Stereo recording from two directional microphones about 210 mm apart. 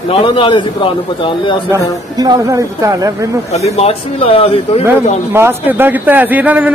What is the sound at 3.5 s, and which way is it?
A man's voice, 30° left (ahead or behind).